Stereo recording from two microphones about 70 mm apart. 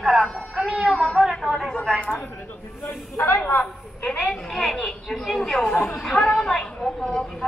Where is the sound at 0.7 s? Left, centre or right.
Centre.